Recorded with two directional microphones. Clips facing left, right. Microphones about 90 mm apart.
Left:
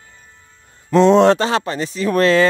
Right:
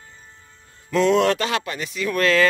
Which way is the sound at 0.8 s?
30° left (ahead or behind).